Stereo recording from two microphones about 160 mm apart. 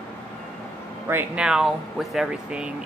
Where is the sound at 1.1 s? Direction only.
10° right (ahead or behind).